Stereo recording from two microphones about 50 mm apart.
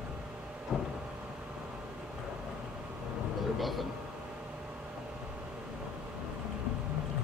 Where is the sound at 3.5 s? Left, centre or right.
Centre.